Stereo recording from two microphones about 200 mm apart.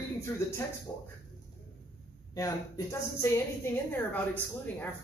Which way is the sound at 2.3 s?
15° left (ahead or behind).